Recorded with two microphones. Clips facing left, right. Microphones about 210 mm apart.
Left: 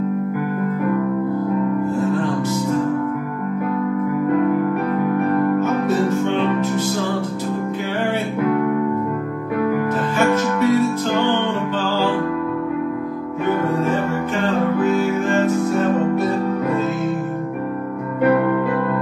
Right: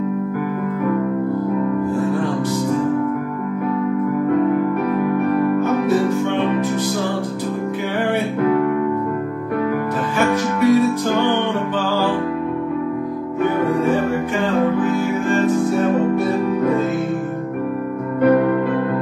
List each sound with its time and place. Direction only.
2.0 s music: 15° right (ahead or behind)
5.6 s music: 15° right (ahead or behind)
10.1 s music: 15° right (ahead or behind)
14.4 s music: 15° right (ahead or behind)